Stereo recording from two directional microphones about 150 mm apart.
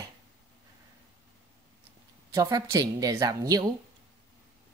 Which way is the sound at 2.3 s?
25° right (ahead or behind).